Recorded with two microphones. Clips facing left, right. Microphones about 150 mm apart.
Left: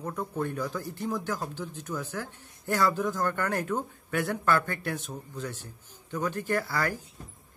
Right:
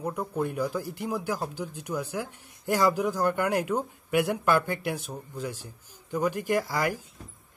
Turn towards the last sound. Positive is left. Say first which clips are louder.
# right 2 dB
turn(degrees=-15)  # may be behind; listen again after turning